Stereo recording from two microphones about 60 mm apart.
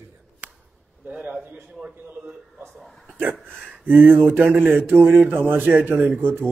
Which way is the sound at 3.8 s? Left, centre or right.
Right.